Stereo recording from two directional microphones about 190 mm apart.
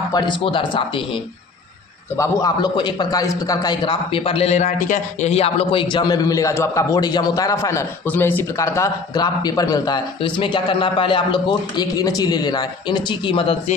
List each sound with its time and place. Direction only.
0.1 s a man's voice: 25° left (ahead or behind)
2.1 s a man's voice: 20° left (ahead or behind)